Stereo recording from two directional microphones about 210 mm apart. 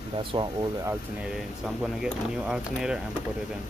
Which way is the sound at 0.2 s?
25° right (ahead or behind).